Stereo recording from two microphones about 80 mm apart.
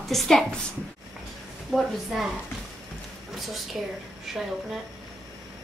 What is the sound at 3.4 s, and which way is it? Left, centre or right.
A woman's voice, centre.